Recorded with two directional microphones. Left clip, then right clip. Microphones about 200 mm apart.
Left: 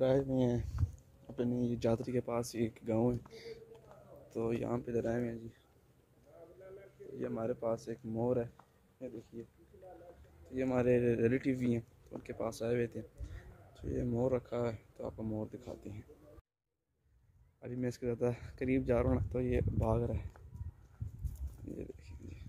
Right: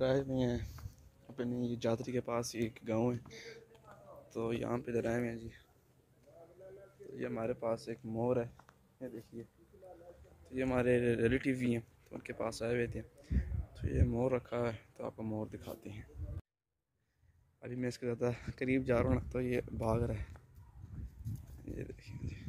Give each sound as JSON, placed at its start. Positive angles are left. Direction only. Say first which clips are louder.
{"t": 0.0, "sound": "speech", "louder": "left 2 dB", "side_deg": 20}
{"t": 7.2, "sound": "speech", "louder": "even", "side_deg": -5}
{"t": 10.4, "sound": "speech", "louder": "left 1 dB", "side_deg": 0}
{"t": 17.6, "sound": "speech", "louder": "left 1 dB", "side_deg": 5}
{"t": 21.6, "sound": "speech", "louder": "even", "side_deg": 0}